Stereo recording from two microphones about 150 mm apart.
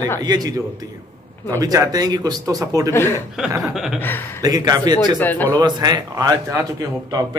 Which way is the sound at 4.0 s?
15° left (ahead or behind).